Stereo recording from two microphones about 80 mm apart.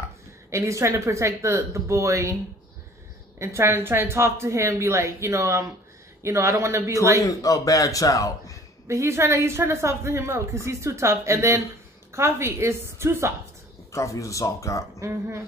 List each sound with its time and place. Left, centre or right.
0.5 s a woman's voice: right
3.3 s a woman's voice: right
7.2 s speech: left
8.8 s a woman's voice: right
13.9 s speech: left
15.0 s a woman's voice: right